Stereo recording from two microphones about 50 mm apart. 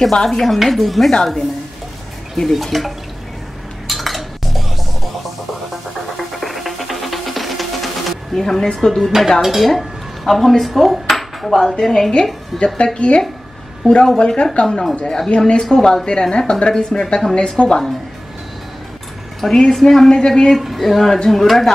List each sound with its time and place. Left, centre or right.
0.0 s speech: centre
1.1 s a woman's voice: centre
2.5 s speech: centre
3.8 s cutlery: centre
6.1 s music: centre
8.7 s speech: centre
9.4 s dishes: centre
11.8 s a woman's voice: centre
12.5 s a woman's voice: centre
19.4 s a woman's voice: centre
20.5 s speech: centre